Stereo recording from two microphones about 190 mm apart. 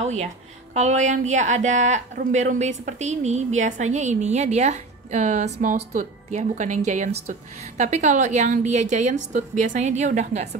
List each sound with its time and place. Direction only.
0.0 s speech: 35° right (ahead or behind)